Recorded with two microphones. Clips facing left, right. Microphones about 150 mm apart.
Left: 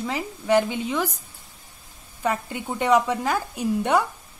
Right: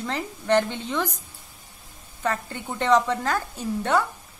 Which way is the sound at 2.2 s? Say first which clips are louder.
Left 2 dB; 10° left (ahead or behind).